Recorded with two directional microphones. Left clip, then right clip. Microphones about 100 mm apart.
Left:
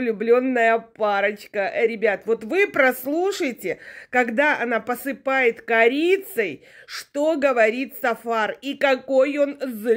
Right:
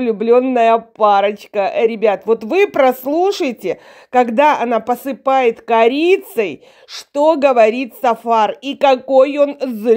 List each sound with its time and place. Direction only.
0.0 s speech: 15° right (ahead or behind)
6.9 s speech: 15° right (ahead or behind)
9.9 s speech: 25° right (ahead or behind)